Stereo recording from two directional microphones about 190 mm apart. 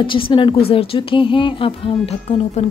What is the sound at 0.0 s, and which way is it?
A woman's voice, 25° left (ahead or behind).